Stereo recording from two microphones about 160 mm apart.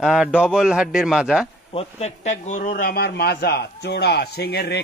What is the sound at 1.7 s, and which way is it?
Speech, 40° left (ahead or behind).